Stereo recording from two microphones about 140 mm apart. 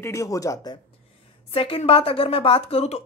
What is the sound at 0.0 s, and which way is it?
Speech, 25° left (ahead or behind).